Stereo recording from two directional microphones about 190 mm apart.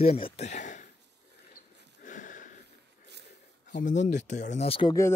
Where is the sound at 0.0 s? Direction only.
30° left (ahead or behind).